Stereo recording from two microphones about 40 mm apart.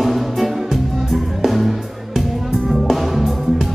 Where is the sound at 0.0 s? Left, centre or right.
Centre.